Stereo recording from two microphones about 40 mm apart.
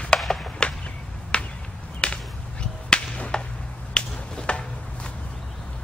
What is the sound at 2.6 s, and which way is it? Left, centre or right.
Whip, left.